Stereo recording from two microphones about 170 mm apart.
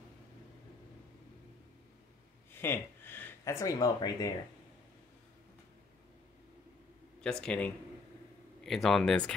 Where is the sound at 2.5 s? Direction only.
15° left (ahead or behind).